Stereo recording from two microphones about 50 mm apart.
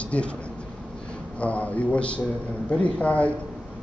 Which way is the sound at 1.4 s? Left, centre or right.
Left.